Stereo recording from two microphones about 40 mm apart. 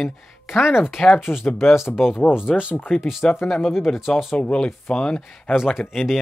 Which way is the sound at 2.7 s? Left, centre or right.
Left.